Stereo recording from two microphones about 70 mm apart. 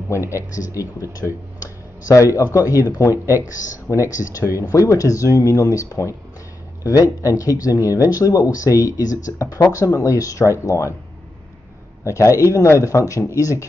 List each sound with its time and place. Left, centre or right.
0.1 s speech: left
12.0 s a man's voice: left